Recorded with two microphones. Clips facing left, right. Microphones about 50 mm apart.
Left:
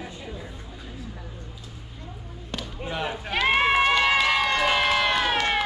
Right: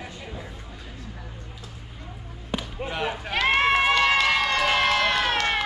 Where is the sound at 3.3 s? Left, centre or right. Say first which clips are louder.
Even; centre.